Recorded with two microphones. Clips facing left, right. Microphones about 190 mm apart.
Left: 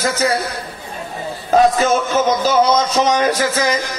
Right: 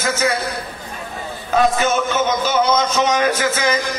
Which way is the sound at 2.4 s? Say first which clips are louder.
Left 3 dB; 35° left (ahead or behind).